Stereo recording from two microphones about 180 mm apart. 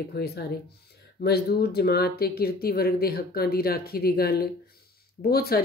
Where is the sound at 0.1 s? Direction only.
60° left (ahead or behind).